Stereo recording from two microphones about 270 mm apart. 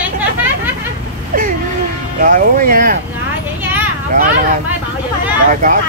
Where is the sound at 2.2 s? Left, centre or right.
Right.